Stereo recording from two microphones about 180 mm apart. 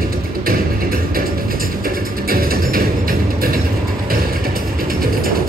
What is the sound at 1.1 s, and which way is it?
Music, 55° right (ahead or behind).